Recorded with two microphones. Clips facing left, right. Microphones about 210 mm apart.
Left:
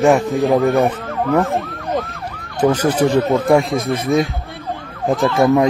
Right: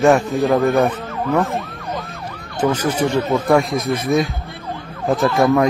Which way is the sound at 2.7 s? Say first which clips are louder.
Left 4 dB; 35° left (ahead or behind).